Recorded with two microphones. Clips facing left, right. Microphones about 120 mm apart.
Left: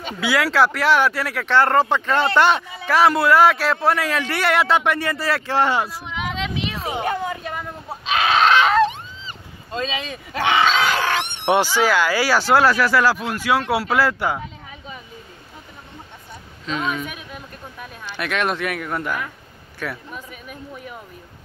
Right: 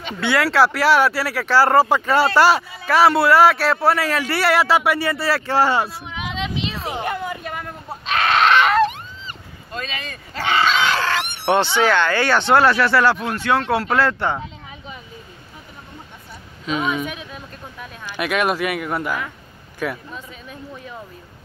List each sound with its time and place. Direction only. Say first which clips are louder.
0.2 s speech: right 1 dB; centre (ahead or behind)
6.8 s a sound: left 1 dB; centre (ahead or behind)
7.4 s goat: even; centre (ahead or behind)
9.7 s speech: left 4 dB; 20° left (ahead or behind); by 14.4 s 5° left (ahead or behind)
16.6 s speech: right 3 dB; 10° right (ahead or behind)